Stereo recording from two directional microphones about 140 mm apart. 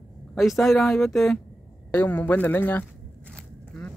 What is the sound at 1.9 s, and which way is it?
Speech, 15° left (ahead or behind).